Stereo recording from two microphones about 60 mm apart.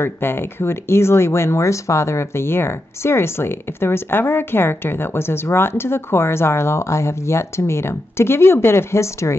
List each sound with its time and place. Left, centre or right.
0.0 s speech: left